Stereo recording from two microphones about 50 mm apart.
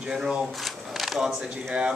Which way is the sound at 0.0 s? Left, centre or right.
Centre.